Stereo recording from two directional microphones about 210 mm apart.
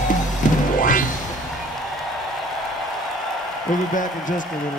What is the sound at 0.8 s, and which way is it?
Music, 40° left (ahead or behind).